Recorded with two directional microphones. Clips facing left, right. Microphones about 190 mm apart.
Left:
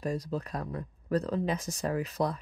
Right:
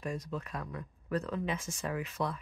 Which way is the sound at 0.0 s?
35° left (ahead or behind).